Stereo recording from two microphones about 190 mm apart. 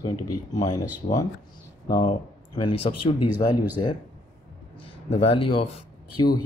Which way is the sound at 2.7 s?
30° left (ahead or behind).